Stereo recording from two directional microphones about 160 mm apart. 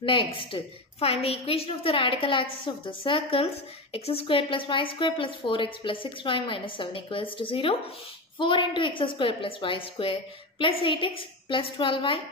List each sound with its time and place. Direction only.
0.0 s a woman's voice: 35° left (ahead or behind)